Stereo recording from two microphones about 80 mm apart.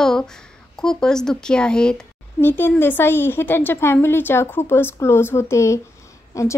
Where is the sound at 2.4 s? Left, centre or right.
Left.